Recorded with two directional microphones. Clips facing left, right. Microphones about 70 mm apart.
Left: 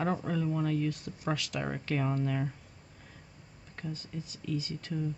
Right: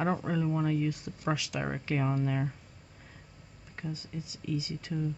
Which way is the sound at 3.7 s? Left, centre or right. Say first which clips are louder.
Right 1 dB; centre.